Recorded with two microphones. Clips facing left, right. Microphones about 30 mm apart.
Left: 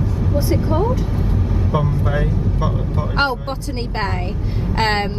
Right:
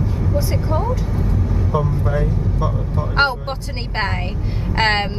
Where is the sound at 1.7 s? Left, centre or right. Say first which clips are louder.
Even; left.